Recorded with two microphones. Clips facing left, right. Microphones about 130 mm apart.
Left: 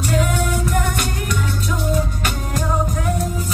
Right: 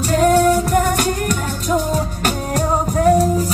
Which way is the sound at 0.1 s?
40° right (ahead or behind).